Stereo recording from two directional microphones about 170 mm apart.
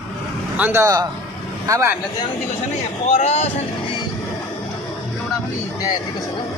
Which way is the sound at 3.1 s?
40° left (ahead or behind).